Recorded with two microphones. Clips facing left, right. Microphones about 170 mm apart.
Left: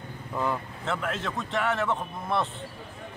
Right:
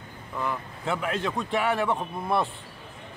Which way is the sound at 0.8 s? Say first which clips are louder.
Right 3 dB; centre (ahead or behind).